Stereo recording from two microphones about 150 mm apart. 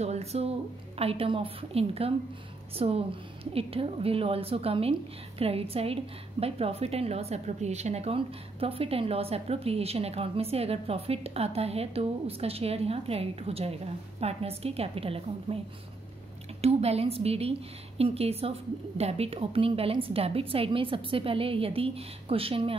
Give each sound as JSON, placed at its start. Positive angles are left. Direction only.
{"t": 0.0, "sound": "a woman's voice", "side_deg": -45}
{"t": 16.6, "sound": "a woman's voice", "side_deg": -45}